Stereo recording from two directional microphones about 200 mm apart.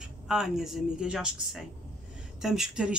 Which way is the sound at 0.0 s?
Centre (ahead or behind).